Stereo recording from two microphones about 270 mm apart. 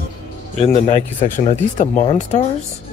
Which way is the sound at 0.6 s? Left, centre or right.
Left.